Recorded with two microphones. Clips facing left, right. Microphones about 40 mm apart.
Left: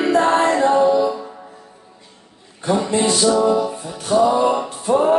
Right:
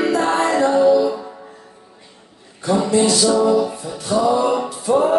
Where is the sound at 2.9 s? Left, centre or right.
Left.